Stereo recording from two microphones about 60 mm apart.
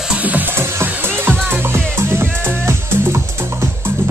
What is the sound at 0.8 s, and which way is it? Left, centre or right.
Music, right.